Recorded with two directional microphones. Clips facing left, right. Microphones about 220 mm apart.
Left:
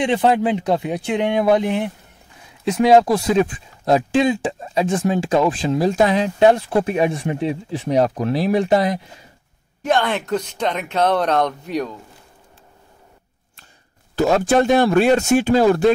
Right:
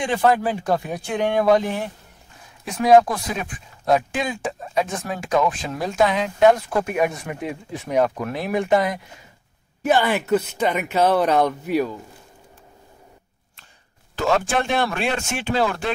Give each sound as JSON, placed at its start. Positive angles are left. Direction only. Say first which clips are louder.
{"t": 0.0, "sound": "speech", "louder": "left 3 dB", "side_deg": 20}
{"t": 9.8, "sound": "speech", "louder": "right 1 dB", "side_deg": -5}
{"t": 14.1, "sound": "speech", "louder": "left 6 dB", "side_deg": 40}